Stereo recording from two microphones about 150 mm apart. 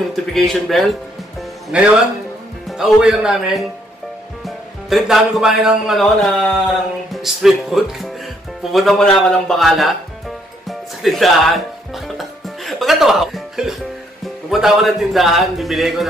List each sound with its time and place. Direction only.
0.1 s a man's voice: centre (ahead or behind)
8.7 s music: centre (ahead or behind)
14.5 s a man's voice: centre (ahead or behind)